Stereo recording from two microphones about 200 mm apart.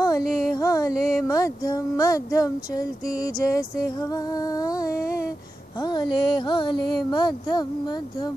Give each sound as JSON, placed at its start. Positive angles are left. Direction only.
{"t": 0.0, "sound": "a sound", "side_deg": 15}
{"t": 4.1, "sound": "music", "side_deg": 15}
{"t": 5.8, "sound": "a woman's voice", "side_deg": 20}